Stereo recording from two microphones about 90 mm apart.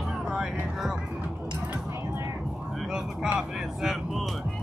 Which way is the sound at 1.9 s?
30° right (ahead or behind).